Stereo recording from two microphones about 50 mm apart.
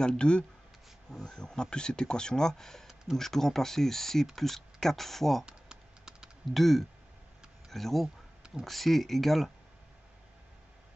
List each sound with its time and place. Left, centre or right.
0.0 s speech: centre
5.4 s typing: centre
6.5 s speech: centre